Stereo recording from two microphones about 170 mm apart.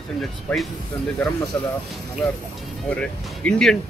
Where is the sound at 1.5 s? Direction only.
10° left (ahead or behind).